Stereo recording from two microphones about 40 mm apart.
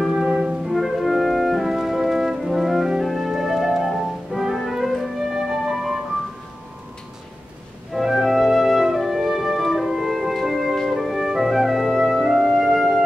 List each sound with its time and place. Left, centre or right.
0.0 s music: centre
0.3 s music: right
0.7 s music: centre
7.9 s music: centre